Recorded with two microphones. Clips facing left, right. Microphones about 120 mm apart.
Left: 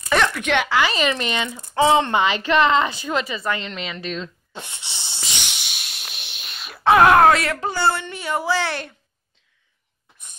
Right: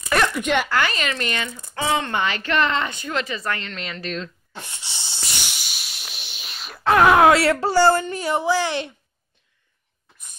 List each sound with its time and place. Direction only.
0.5 s speech: 5° right (ahead or behind)
0.7 s speech: 5° left (ahead or behind)
1.1 s a woman's voice: 20° left (ahead or behind); by 4.3 s centre (ahead or behind)
4.5 s speech: 20° left (ahead or behind)
5.2 s a sound: centre (ahead or behind)
7.3 s speech: 30° right (ahead or behind)
8.4 s a woman's voice: 15° right (ahead or behind)